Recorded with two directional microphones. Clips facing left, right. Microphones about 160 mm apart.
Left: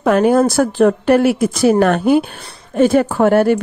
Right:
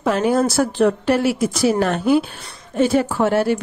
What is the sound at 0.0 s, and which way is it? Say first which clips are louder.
Speech: left 5 dB; 55° left (ahead or behind).